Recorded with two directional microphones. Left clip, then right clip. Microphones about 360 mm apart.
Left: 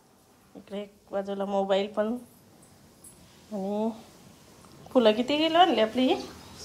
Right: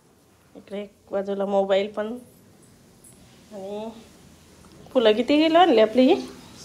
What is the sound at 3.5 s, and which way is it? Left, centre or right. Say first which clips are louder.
Speech: left 3 dB; centre.